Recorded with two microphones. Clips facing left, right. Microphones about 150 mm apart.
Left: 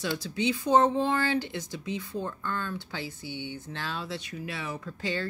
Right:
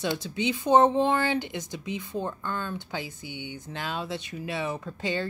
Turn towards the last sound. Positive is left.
turn(degrees=-20)  # may be behind; listen again after turning